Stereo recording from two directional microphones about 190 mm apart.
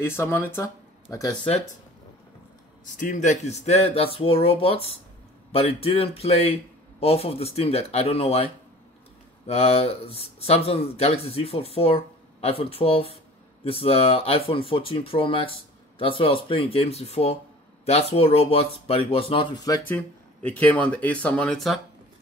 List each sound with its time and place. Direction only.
0.0 s speech: 15° left (ahead or behind)
3.0 s speech: 40° left (ahead or behind)
9.5 s speech: 30° left (ahead or behind)
19.9 s speech: 10° left (ahead or behind)